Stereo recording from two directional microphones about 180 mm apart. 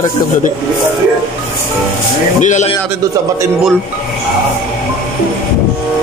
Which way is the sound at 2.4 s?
40° left (ahead or behind).